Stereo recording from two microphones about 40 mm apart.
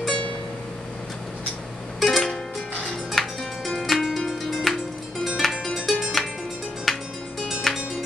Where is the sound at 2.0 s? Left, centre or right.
Centre.